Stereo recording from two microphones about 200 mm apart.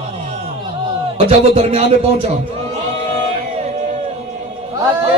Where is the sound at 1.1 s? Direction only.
30° right (ahead or behind).